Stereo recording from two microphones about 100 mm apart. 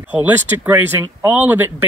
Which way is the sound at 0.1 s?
20° right (ahead or behind).